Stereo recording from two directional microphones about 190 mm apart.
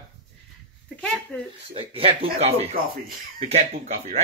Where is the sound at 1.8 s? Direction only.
30° right (ahead or behind).